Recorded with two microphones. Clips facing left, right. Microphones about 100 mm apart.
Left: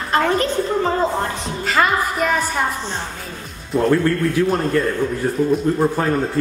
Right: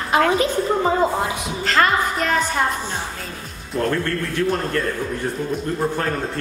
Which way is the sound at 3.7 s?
5° left (ahead or behind).